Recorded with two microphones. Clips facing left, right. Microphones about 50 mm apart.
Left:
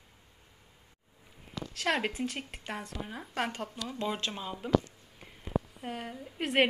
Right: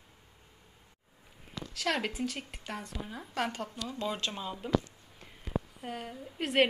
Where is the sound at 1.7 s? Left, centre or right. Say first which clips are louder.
Left 2 dB; left.